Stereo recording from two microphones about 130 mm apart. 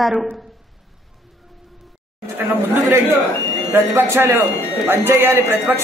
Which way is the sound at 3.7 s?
20° right (ahead or behind).